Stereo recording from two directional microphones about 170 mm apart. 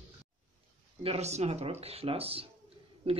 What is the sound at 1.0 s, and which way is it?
Speech, 40° right (ahead or behind).